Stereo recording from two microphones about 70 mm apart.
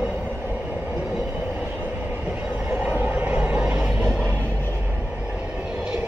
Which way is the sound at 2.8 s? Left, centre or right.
Right.